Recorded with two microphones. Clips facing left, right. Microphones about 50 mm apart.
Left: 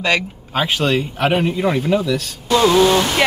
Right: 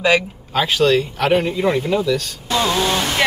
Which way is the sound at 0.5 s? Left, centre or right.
Left.